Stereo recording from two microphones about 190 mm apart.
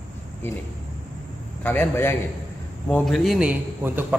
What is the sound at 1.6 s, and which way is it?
A man's voice, 10° left (ahead or behind).